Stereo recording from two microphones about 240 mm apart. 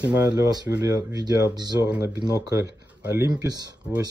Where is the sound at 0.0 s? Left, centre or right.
Centre.